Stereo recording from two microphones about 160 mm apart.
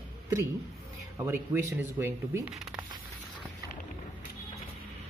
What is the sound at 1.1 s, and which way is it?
Speech, 15° right (ahead or behind).